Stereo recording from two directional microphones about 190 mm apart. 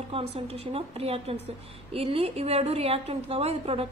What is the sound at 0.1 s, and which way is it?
A woman's voice, 30° right (ahead or behind).